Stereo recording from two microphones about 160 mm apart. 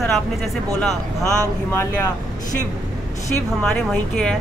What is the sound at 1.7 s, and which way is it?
Speech, 15° left (ahead or behind).